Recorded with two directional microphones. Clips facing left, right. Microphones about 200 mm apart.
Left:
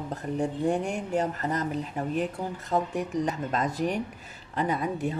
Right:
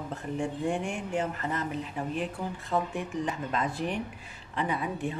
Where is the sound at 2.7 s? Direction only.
40° left (ahead or behind).